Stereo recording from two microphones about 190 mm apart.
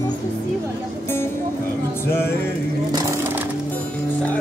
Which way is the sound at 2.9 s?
20° right (ahead or behind).